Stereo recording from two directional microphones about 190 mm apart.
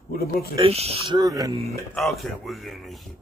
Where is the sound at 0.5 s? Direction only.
30° right (ahead or behind).